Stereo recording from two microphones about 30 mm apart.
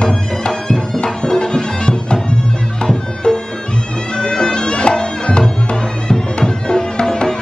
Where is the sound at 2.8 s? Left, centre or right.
Centre.